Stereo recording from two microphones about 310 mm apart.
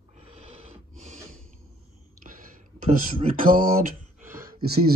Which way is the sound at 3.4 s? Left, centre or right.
Right.